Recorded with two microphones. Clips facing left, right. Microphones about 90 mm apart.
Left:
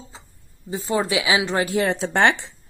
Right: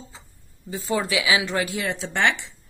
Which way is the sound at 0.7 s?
25° left (ahead or behind).